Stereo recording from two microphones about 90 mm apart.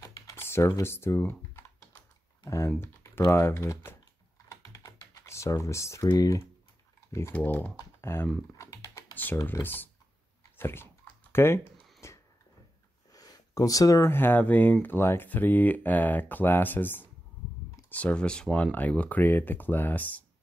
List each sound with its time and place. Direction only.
0.0 s typing: 30° left (ahead or behind)
2.4 s speech: 35° left (ahead or behind)
4.5 s typing: 35° left (ahead or behind)
6.1 s speech: 35° left (ahead or behind)
7.3 s speech: 20° left (ahead or behind)
8.5 s typing: 35° left (ahead or behind)
9.1 s computer keyboard: 20° left (ahead or behind)
9.4 s speech: 25° left (ahead or behind)
10.6 s typing: 25° left (ahead or behind)
12.0 s a sound: 30° left (ahead or behind)
13.1 s speech: 45° left (ahead or behind); by 20.2 s 20° left (ahead or behind)